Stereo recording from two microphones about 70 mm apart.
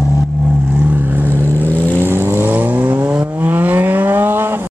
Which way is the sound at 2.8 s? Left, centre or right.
Right.